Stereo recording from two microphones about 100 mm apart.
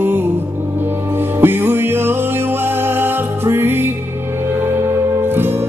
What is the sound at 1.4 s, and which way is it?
Music, 25° right (ahead or behind).